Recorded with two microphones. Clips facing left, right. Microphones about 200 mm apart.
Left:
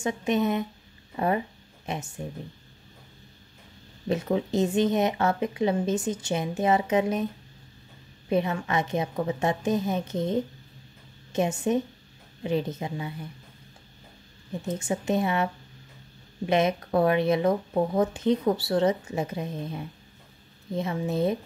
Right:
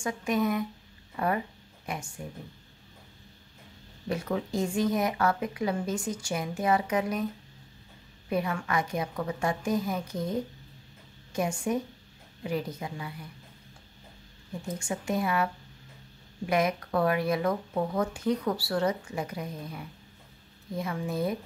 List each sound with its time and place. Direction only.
0.0 s speech: 25° left (ahead or behind)
4.1 s speech: 20° left (ahead or behind)
8.3 s speech: 25° left (ahead or behind)
14.7 s speech: 25° left (ahead or behind)